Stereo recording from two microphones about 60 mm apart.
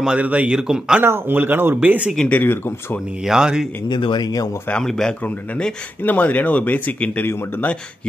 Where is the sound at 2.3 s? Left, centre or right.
Left.